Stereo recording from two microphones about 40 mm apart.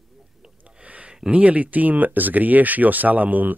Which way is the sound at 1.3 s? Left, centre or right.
Right.